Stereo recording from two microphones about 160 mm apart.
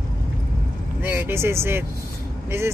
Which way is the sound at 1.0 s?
15° right (ahead or behind).